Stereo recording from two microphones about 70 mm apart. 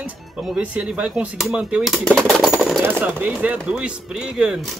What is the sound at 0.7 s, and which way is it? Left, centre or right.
Speech, centre.